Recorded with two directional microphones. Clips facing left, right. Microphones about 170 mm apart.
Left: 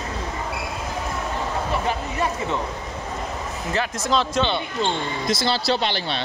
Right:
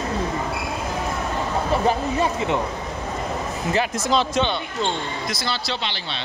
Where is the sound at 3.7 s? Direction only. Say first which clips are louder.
Right 1 dB; 5° right (ahead or behind).